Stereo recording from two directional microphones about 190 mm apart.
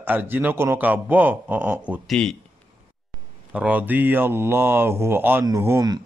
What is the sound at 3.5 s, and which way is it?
Speech, 5° right (ahead or behind).